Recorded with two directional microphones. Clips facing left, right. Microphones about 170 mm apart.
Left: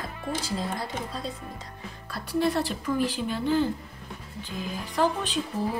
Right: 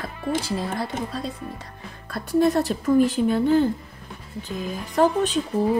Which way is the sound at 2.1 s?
45° right (ahead or behind).